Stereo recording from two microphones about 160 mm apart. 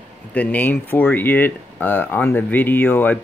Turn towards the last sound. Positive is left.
turn(degrees=10)  # may be behind; listen again after turning